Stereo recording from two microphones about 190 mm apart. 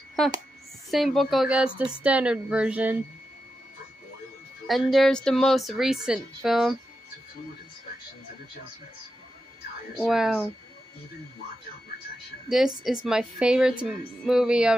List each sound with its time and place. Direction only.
0.8 s a woman's voice: centre (ahead or behind)
4.6 s a woman's voice: centre (ahead or behind)
9.9 s a woman's voice: centre (ahead or behind)
12.4 s a woman's voice: centre (ahead or behind)